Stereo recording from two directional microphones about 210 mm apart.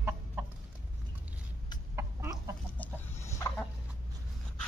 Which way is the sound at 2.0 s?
15° right (ahead or behind).